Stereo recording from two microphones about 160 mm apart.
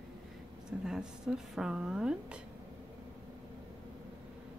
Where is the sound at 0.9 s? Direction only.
5° right (ahead or behind).